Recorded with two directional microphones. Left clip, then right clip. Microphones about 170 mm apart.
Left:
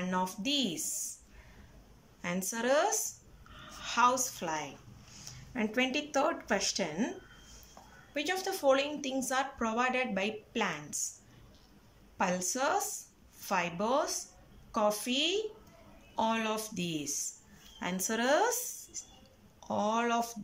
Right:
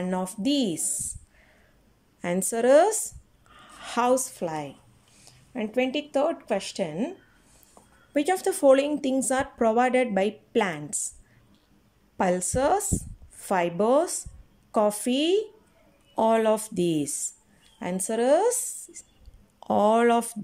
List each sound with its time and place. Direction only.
0.0 s speech: 40° right (ahead or behind)
2.2 s speech: 40° right (ahead or behind); by 7.1 s 25° right (ahead or behind)
8.1 s speech: 40° right (ahead or behind)
12.2 s speech: 45° right (ahead or behind)
17.7 s speech: 35° right (ahead or behind)
19.7 s speech: 50° right (ahead or behind)